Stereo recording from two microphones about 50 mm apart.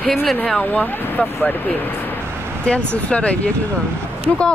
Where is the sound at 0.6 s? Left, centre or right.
Left.